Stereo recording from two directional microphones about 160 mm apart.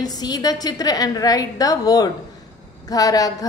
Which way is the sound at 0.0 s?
25° left (ahead or behind).